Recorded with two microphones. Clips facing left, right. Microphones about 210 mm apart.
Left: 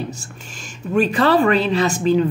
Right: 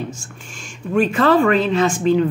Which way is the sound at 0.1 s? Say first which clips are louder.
Left 1 dB; 40° left (ahead or behind).